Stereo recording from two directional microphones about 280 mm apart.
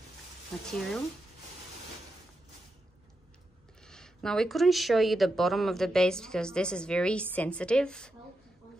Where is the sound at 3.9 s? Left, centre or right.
Centre.